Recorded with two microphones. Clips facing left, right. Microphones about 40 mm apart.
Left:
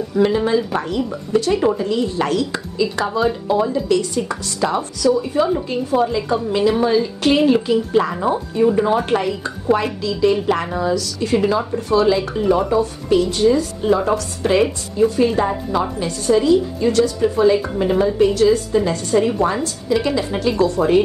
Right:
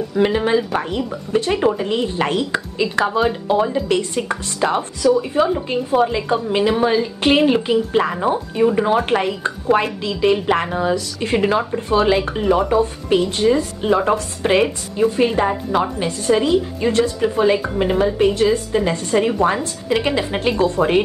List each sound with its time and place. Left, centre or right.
0.2 s speech: right
9.4 s speech: right